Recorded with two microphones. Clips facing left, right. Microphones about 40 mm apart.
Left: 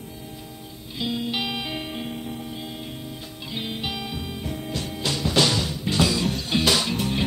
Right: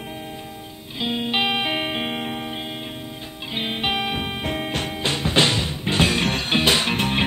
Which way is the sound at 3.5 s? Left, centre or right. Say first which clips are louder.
Right 7 dB; right.